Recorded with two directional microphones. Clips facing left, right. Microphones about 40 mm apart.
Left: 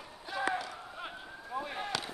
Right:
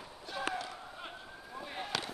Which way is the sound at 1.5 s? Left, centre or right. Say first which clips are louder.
Left 7 dB; left.